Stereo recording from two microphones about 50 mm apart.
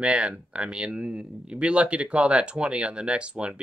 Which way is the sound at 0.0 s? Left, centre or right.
Right.